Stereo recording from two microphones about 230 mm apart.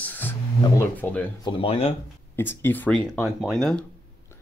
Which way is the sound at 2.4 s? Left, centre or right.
Centre.